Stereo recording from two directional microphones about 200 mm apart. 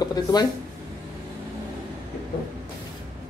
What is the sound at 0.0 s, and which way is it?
Speech, 20° left (ahead or behind).